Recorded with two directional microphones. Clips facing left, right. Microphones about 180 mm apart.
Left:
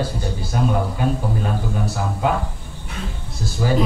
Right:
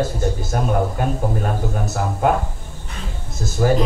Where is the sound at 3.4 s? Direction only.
45° right (ahead or behind).